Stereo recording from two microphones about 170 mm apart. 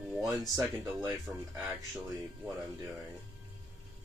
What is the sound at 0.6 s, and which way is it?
Speech, 20° right (ahead or behind).